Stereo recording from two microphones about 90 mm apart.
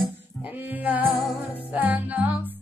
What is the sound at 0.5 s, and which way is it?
Music, 20° right (ahead or behind).